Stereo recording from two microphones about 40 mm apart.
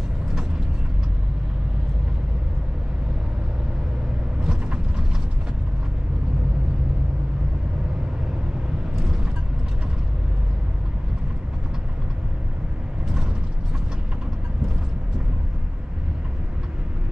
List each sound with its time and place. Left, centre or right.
4.4 s vehicle: right